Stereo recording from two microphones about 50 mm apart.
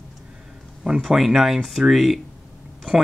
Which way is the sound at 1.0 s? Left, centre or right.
Centre.